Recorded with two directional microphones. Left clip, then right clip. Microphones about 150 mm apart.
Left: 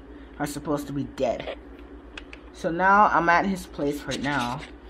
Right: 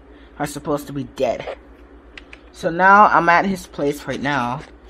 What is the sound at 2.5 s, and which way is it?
A woman's voice, 35° right (ahead or behind).